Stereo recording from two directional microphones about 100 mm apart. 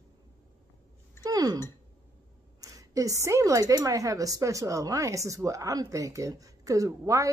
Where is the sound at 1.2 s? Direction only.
40° right (ahead or behind).